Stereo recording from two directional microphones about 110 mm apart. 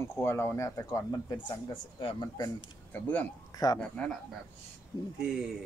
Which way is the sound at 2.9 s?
15° left (ahead or behind).